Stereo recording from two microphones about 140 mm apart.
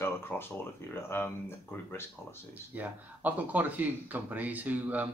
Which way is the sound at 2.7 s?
10° right (ahead or behind).